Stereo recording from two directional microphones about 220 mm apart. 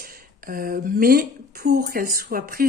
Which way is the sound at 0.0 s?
40° right (ahead or behind).